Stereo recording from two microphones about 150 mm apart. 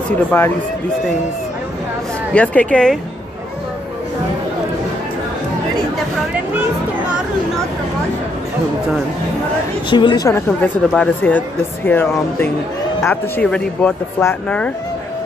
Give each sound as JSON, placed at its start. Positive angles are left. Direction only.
{"t": 0.3, "sound": "speech", "side_deg": 15}
{"t": 2.3, "sound": "speech", "side_deg": 10}
{"t": 9.8, "sound": "speech", "side_deg": 30}
{"t": 10.9, "sound": "speech", "side_deg": 10}